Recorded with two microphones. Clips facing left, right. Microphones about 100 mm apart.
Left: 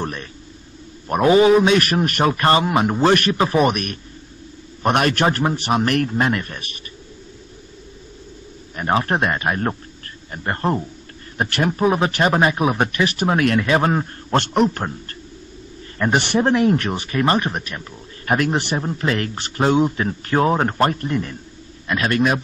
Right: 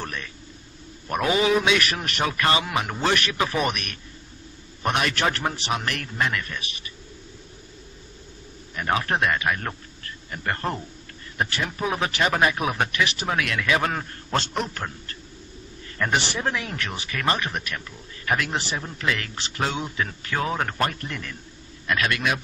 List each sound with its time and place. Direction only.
0.0 s speech: 35° left (ahead or behind)
4.8 s speech: 50° left (ahead or behind)
8.7 s a man's voice: 35° left (ahead or behind)
11.4 s speech: 55° left (ahead or behind)
11.8 s speech: 30° left (ahead or behind)
12.9 s speech: 45° left (ahead or behind)
16.1 s speech: 55° left (ahead or behind)
16.3 s speech: 35° left (ahead or behind)
17.1 s speech: 30° left (ahead or behind)